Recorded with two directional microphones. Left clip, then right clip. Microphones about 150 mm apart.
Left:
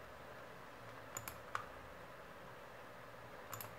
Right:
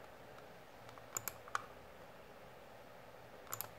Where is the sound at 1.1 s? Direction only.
55° right (ahead or behind).